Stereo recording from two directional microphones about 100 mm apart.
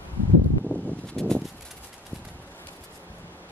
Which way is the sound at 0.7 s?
20° right (ahead or behind).